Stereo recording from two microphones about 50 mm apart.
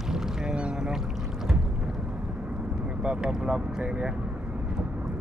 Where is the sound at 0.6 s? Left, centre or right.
Right.